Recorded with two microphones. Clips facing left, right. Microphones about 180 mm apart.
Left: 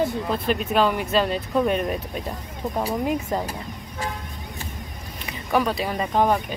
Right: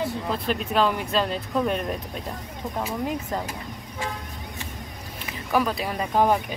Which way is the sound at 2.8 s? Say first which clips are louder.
Left 4 dB; 35° left (ahead or behind).